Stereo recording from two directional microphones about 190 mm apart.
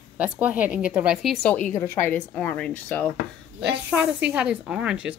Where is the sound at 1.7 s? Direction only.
15° left (ahead or behind).